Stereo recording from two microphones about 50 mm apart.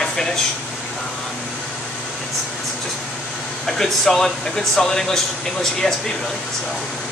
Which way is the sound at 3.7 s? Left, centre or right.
Centre.